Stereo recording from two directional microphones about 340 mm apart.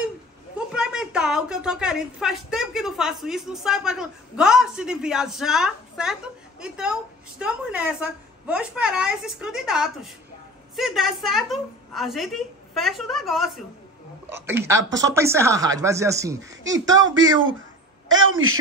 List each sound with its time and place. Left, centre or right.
0.7 s a woman's voice: centre
16.8 s a woman's voice: right